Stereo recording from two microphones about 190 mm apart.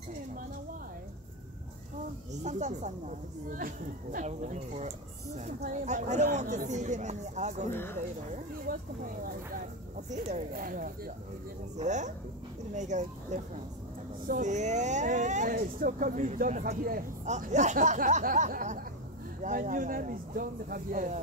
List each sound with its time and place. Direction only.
2.4 s speech: 40° right (ahead or behind)
7.7 s speech: 10° left (ahead or behind)
8.7 s speech: 50° right (ahead or behind)
10.1 s speech: 40° right (ahead or behind)